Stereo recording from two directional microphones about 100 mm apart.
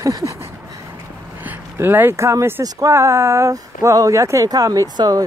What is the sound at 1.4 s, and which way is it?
Speech, 20° right (ahead or behind).